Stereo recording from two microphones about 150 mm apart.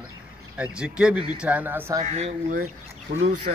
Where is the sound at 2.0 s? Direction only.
45° right (ahead or behind).